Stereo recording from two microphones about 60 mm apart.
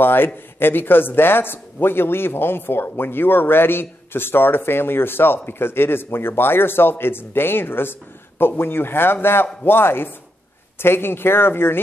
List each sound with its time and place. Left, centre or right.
0.0 s speech: left